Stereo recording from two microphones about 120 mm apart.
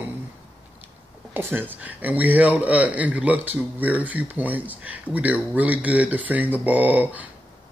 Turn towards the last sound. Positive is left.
turn(degrees=-15)  # may be behind; listen again after turning